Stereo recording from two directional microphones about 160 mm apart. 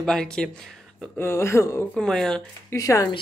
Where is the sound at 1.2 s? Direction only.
15° left (ahead or behind).